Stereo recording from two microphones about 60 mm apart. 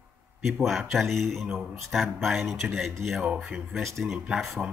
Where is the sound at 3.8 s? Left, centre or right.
Centre.